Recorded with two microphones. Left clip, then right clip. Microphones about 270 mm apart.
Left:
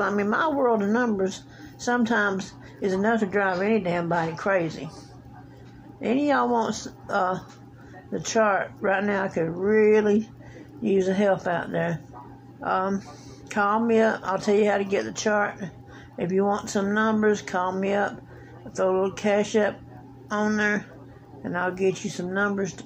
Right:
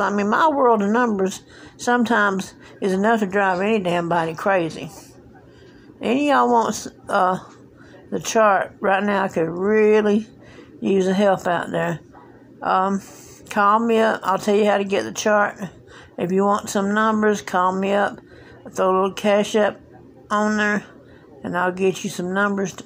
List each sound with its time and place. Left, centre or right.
0.0 s a woman's voice: right
5.9 s a woman's voice: right